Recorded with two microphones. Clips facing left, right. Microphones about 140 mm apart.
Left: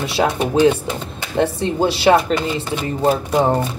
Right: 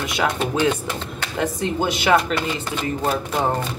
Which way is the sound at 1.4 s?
30° left (ahead or behind).